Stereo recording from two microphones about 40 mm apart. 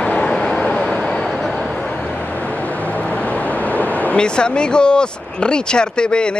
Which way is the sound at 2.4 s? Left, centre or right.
Left.